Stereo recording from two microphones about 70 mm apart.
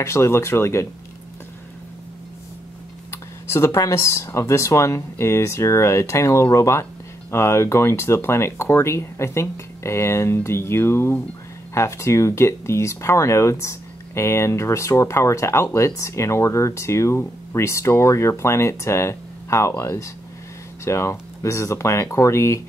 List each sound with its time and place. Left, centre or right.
0.0 s speech: left
3.1 s speech: left